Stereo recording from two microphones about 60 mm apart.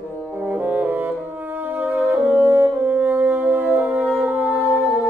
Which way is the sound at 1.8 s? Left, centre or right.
Right.